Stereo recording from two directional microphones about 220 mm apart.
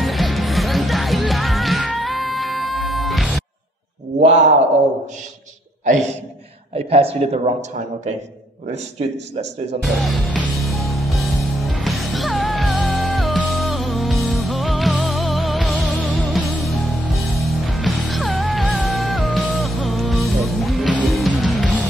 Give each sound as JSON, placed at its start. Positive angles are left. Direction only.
{"t": 0.0, "sound": "music", "side_deg": 0}
{"t": 4.2, "sound": "speech", "side_deg": -30}
{"t": 6.7, "sound": "a man's voice", "side_deg": -25}
{"t": 9.8, "sound": "music", "side_deg": 0}